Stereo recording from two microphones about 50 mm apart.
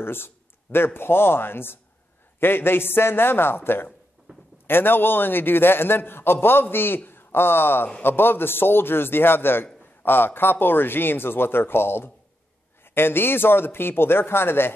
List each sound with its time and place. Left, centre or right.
0.0 s a man's voice: left
4.3 s a sound: centre
4.6 s a man's voice: left